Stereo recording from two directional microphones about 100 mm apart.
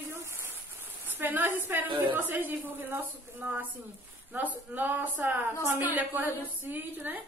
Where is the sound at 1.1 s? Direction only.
20° right (ahead or behind).